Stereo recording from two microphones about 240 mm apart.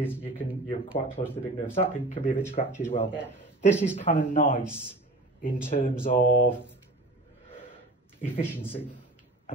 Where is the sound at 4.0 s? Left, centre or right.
Left.